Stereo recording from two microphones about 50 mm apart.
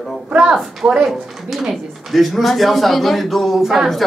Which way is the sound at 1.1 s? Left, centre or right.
Centre.